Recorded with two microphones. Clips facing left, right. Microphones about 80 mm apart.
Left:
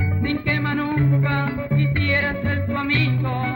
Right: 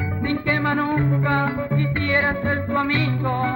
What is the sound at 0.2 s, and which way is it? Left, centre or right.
Music, right.